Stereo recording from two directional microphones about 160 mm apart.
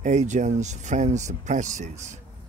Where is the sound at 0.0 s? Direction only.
50° right (ahead or behind).